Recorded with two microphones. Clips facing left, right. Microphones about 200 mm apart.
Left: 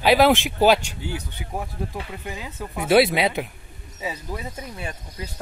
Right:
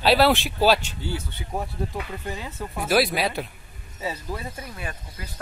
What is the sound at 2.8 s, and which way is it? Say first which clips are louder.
Speech: left 5 dB; 25° left (ahead or behind).